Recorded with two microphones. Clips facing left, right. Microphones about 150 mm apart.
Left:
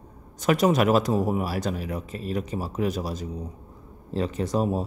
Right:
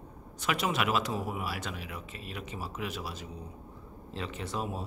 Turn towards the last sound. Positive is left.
turn(degrees=40)  # may be behind; listen again after turning